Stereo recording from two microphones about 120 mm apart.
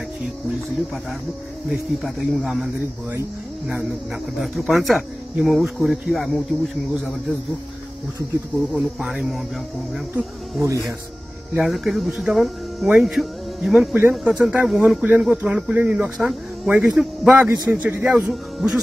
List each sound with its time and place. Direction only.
1.7 s speech: centre (ahead or behind)
4.4 s speech: centre (ahead or behind)
8.7 s speech: 5° right (ahead or behind)
11.5 s speech: 5° right (ahead or behind)
18.3 s speech: 5° right (ahead or behind)